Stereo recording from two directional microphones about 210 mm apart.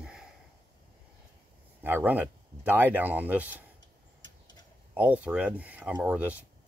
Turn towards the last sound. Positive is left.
turn(degrees=-5)  # may be behind; listen again after turning